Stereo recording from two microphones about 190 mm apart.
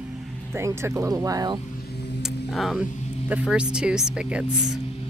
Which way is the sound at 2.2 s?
Centre (ahead or behind).